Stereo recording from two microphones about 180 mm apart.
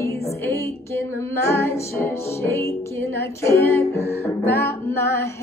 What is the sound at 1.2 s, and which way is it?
Music, 15° left (ahead or behind).